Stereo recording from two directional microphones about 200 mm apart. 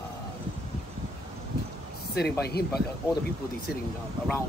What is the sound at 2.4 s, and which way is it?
Speech, 55° left (ahead or behind).